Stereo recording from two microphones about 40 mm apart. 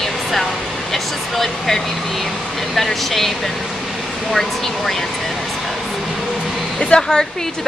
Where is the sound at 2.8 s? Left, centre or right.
Centre.